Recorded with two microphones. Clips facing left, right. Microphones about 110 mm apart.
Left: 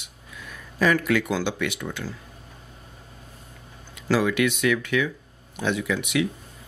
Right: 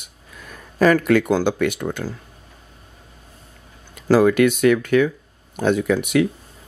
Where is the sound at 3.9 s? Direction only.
45° right (ahead or behind).